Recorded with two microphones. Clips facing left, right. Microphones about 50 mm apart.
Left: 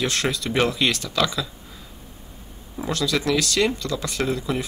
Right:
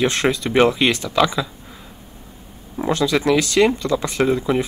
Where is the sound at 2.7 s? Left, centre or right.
Right.